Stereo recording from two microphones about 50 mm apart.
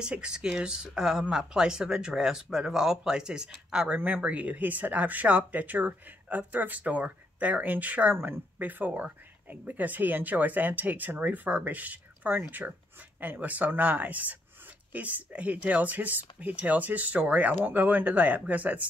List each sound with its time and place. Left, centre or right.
0.0 s speech: centre
4.0 s speech: right